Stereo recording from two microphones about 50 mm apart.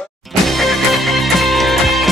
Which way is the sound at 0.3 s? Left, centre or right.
Centre.